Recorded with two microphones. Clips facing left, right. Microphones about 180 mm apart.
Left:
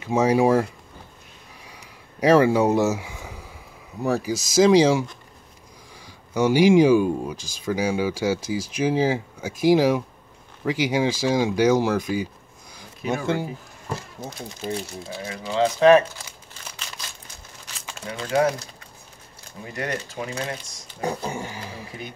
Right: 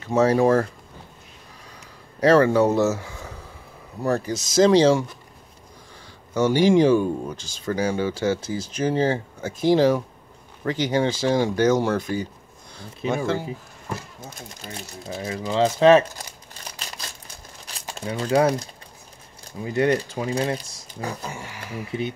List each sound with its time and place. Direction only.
0.0 s speech: 15° left (ahead or behind)
2.1 s speech: 15° left (ahead or behind)
6.3 s speech: 10° left (ahead or behind)
15.4 s crumpling: 35° right (ahead or behind)
17.7 s speech: 35° right (ahead or behind)
21.0 s speech: 30° left (ahead or behind)